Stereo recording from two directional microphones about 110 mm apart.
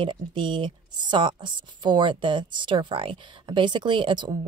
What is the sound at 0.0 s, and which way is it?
A woman's voice, 45° right (ahead or behind).